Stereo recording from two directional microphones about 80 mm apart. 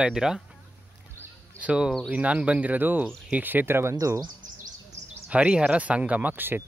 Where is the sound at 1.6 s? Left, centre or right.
Centre; by 3.9 s right.